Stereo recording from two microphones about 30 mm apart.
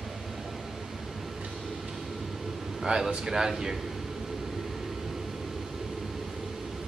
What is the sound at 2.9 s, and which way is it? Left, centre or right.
Speech, right.